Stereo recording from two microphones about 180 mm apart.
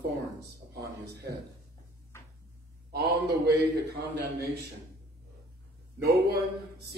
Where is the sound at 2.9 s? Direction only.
60° right (ahead or behind).